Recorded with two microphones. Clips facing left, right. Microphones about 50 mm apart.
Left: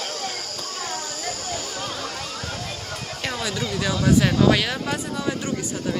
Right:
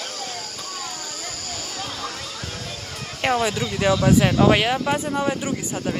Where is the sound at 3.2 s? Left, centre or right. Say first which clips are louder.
Right 8 dB; right.